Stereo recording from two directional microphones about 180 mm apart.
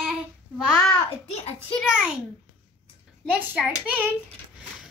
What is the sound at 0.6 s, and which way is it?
Speech, 15° left (ahead or behind).